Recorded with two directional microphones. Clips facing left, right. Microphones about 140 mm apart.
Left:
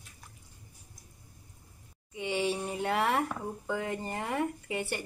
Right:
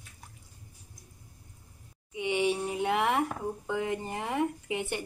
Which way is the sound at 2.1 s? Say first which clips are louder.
Right 3 dB; 15° right (ahead or behind).